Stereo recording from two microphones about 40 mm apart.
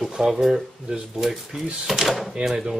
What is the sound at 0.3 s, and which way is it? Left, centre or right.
Speech, centre.